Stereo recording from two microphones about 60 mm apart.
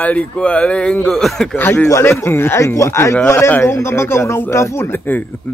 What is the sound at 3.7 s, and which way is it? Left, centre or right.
Speech, left.